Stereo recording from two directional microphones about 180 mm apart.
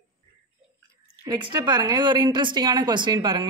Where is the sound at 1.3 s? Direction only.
25° right (ahead or behind).